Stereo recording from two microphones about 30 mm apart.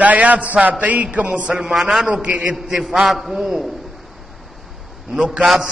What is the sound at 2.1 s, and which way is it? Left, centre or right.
Speech, right.